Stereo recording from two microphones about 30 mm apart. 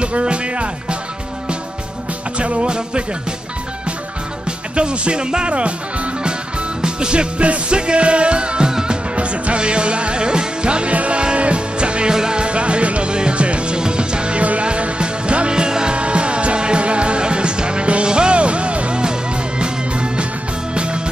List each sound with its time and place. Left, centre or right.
0.0 s speech: right
2.3 s music: right
4.5 s speech: right
5.5 s music: right
6.8 s music: right
8.6 s music: right
9.1 s music: right
10.9 s music: right
12.1 s music: right
12.4 s music: right
13.7 s music: right
16.0 s music: right